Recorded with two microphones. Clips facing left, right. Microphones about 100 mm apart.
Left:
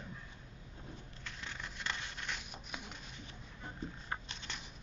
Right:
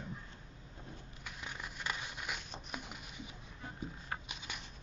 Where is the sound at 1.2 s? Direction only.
10° right (ahead or behind).